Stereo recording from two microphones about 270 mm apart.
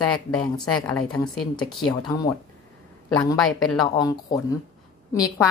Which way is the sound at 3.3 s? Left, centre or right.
Centre.